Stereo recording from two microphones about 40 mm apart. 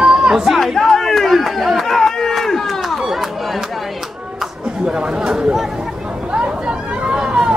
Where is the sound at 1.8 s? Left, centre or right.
Centre.